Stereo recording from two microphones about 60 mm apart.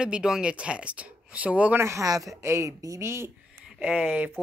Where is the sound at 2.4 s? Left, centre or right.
Right.